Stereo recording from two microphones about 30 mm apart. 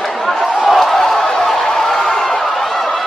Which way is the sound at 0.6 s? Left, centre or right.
Centre.